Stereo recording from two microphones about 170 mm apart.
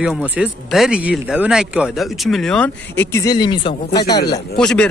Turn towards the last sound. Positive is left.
turn(degrees=5)  # may be behind; listen again after turning